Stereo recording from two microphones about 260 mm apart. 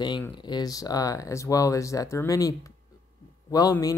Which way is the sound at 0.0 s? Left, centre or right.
Centre.